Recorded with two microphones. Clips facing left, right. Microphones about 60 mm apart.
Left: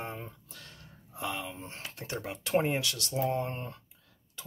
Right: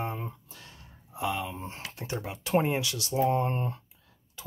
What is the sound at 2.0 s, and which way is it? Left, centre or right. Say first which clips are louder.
Speech: right 2 dB; centre.